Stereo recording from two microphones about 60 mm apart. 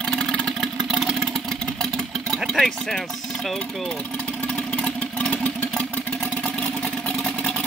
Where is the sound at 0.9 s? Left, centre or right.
Centre.